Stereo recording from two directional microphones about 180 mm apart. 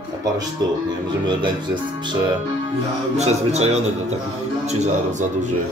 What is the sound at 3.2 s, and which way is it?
Speech, 35° right (ahead or behind).